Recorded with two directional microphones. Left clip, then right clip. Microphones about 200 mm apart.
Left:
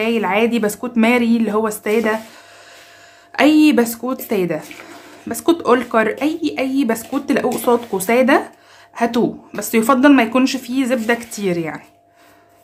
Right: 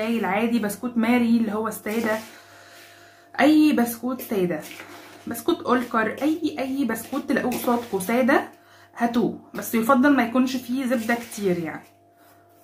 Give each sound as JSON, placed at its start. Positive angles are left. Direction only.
{"t": 0.0, "sound": "speech", "side_deg": 50}
{"t": 3.3, "sound": "speech", "side_deg": 45}